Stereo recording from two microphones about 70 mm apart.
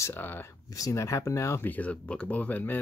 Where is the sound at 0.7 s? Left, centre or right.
Left.